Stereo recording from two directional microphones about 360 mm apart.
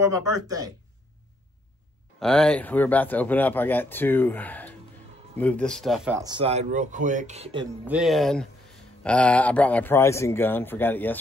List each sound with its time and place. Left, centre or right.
0.1 s speech: centre
2.1 s speech: centre
7.8 s speech: centre